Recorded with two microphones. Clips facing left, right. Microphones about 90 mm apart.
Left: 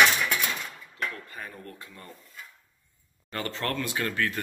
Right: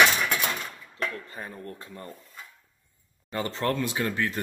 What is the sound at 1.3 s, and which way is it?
Speech, 30° right (ahead or behind).